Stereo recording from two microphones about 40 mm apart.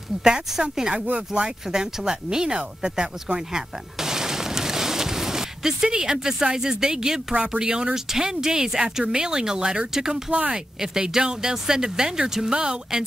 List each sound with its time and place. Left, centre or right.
0.2 s speech: centre
3.3 s a sound: centre
7.3 s speech: right